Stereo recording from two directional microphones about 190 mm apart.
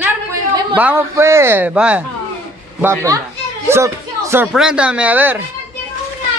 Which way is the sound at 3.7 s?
15° right (ahead or behind).